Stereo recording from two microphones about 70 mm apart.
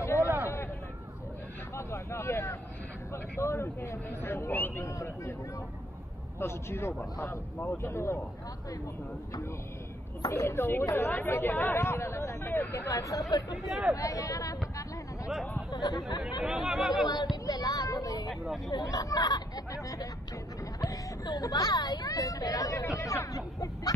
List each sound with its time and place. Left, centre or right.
0.0 s a sound: left
1.8 s vehicle: left
3.1 s speech: left
4.8 s speech: left
6.4 s speech: left
10.2 s speech: left
10.6 s speech: left
12.9 s speech: left
13.7 s speech: centre
13.9 s speech: left
15.7 s speech: left
16.2 s speech: centre
17.5 s vehicle: left
18.7 s speech: left